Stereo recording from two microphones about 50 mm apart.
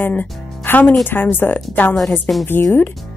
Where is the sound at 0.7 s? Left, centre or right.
Left.